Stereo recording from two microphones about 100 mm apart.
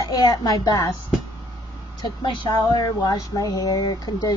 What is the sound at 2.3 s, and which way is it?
Speech, 45° left (ahead or behind).